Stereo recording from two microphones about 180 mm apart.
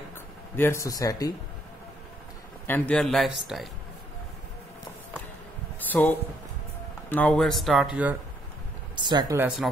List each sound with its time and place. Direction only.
0.6 s speech: 15° left (ahead or behind)
2.6 s speech: 10° left (ahead or behind)
5.9 s speech: 10° left (ahead or behind); by 8.2 s 5° right (ahead or behind)
8.9 s speech: 25° right (ahead or behind)